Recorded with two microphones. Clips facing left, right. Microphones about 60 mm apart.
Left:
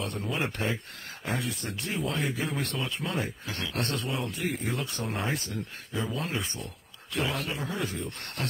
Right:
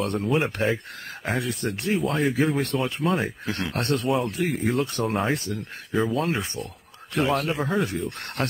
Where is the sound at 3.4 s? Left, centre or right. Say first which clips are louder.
Right 5 dB; right.